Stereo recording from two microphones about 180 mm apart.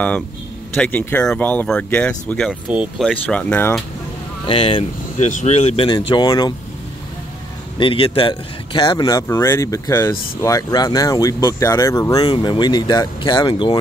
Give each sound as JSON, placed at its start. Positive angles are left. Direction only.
{"t": 0.7, "sound": "speech", "side_deg": 10}
{"t": 2.7, "sound": "speech", "side_deg": -5}
{"t": 3.1, "sound": "speech", "side_deg": 5}
{"t": 4.5, "sound": "speech", "side_deg": 30}
{"t": 5.9, "sound": "speech", "side_deg": 25}
{"t": 7.8, "sound": "speech", "side_deg": 30}